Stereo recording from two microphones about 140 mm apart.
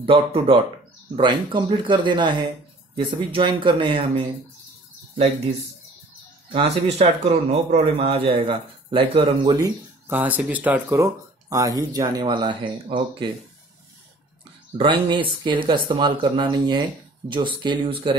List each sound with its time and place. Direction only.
0.0 s speech: 40° right (ahead or behind)
6.5 s speech: 50° right (ahead or behind); by 9.7 s 35° right (ahead or behind)
10.0 s speech: 15° right (ahead or behind); by 13.3 s 35° right (ahead or behind)
14.8 s speech: 35° right (ahead or behind)